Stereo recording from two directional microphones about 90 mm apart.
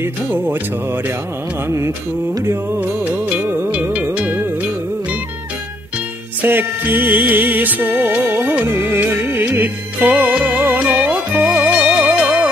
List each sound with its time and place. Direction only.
0.0 s music: 20° right (ahead or behind)
1.7 s music: 30° right (ahead or behind)
6.4 s music: 25° right (ahead or behind)